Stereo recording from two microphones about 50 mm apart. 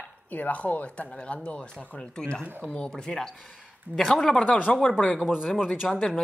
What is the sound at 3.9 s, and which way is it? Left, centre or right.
Speech, centre.